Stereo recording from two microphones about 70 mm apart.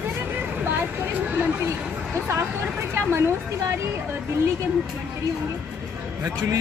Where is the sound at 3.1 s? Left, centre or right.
Right.